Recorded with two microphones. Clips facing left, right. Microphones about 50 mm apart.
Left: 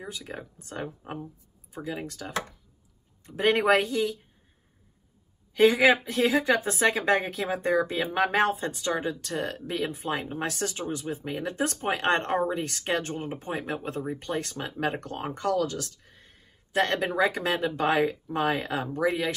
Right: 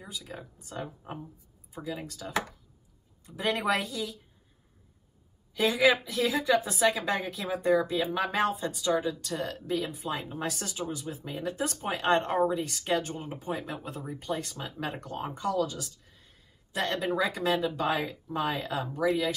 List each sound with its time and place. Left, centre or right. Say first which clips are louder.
0.0 s a woman's voice: left 4 dB; left
5.5 s a woman's voice: left 4 dB; left